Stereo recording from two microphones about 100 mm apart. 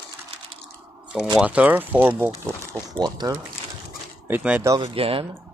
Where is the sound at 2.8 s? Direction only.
45° right (ahead or behind).